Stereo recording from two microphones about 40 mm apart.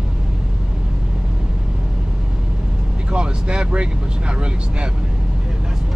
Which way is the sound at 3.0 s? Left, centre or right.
Right.